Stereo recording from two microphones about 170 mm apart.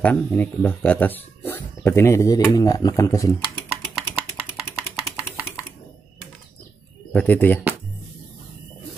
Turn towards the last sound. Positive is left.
turn(degrees=10)  # may be behind; listen again after turning